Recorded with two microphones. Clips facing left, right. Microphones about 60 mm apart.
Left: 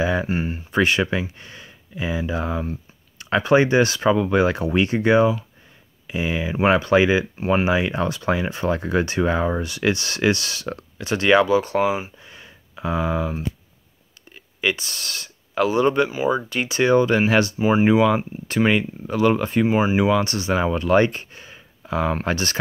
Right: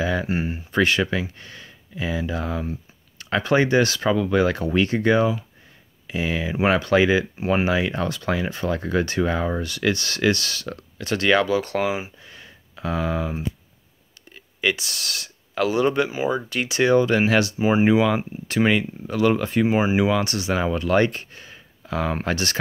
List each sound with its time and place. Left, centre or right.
0.0 s speech: centre
0.3 s speech: centre
0.7 s speech: centre
12.2 s a sound: centre
14.3 s speech: centre
17.6 s speech: centre
17.8 s speech: centre